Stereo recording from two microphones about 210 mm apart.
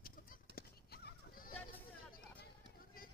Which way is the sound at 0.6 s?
50° left (ahead or behind).